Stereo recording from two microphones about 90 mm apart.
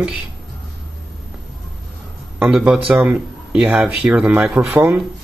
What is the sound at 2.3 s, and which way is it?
A man's voice, 15° right (ahead or behind).